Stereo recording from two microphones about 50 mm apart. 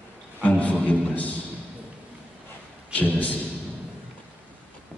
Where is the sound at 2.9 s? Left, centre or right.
Left.